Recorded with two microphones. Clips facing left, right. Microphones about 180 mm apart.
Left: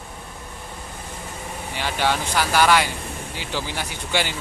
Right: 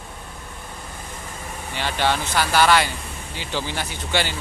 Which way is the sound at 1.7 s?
10° left (ahead or behind).